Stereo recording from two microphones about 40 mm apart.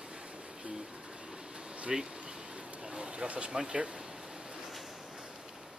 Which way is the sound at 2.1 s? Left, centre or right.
Right.